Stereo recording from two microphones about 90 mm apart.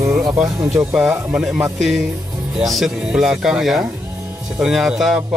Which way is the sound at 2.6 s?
Centre (ahead or behind).